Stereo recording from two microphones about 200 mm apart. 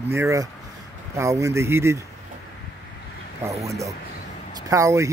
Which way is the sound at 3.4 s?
15° right (ahead or behind).